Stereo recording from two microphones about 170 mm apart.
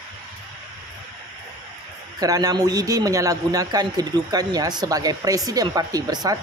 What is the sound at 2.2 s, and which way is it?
A man's voice, 20° right (ahead or behind).